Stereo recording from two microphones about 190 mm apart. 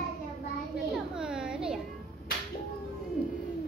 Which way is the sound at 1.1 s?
5° right (ahead or behind).